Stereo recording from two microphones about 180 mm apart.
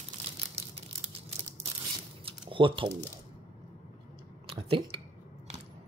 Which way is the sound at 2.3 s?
30° right (ahead or behind).